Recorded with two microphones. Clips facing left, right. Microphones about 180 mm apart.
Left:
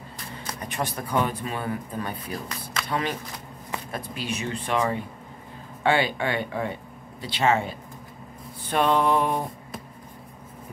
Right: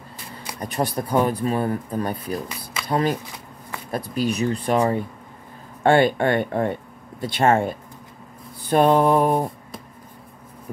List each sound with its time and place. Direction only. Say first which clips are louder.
0.6 s speech: right 7 dB; 35° right (ahead or behind)
2.4 s speech: right 1 dB; 10° right (ahead or behind)
2.9 s speech: right 7 dB; 40° right (ahead or behind)
5.9 s speech: right 7 dB; 50° right (ahead or behind)
8.6 s mantra: right 6 dB; 40° right (ahead or behind)